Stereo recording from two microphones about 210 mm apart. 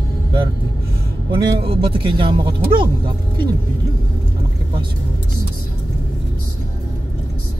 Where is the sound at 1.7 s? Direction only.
25° right (ahead or behind).